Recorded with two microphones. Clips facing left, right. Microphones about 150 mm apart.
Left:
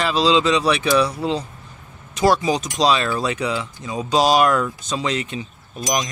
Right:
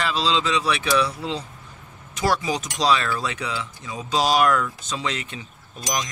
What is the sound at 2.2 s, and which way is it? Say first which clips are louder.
A man's voice: left 6 dB; 25° left (ahead or behind).